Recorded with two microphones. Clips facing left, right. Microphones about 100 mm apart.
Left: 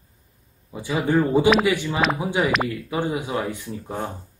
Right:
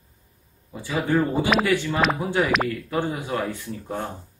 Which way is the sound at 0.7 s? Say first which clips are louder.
Left 2 dB; 15° left (ahead or behind).